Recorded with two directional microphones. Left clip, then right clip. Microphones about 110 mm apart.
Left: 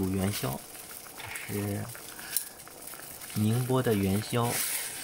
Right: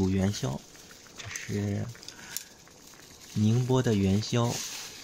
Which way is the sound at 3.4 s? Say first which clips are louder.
Right 1 dB; 20° right (ahead or behind).